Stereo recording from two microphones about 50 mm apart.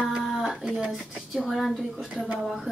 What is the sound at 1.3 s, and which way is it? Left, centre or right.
Speech, centre.